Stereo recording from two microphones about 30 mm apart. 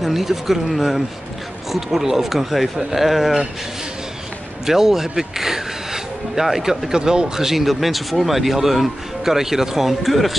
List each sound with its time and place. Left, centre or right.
0.0 s speech: centre
4.6 s speech: centre
7.0 s speech: right
7.3 s speech: centre